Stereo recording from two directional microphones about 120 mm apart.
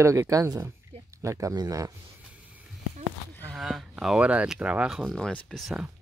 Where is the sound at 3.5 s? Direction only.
Centre (ahead or behind).